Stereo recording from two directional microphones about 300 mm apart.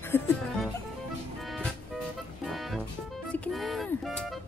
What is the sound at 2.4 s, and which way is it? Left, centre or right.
Music, centre.